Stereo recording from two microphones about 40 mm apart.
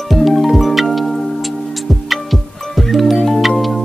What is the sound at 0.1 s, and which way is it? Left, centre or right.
Music, centre.